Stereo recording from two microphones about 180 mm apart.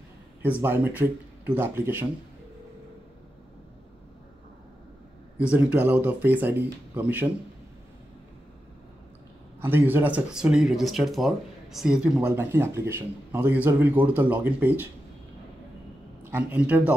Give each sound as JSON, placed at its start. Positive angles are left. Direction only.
{"t": 0.4, "sound": "speech", "side_deg": -10}
{"t": 5.4, "sound": "speech", "side_deg": -10}
{"t": 9.6, "sound": "speech", "side_deg": -10}
{"t": 16.3, "sound": "speech", "side_deg": -10}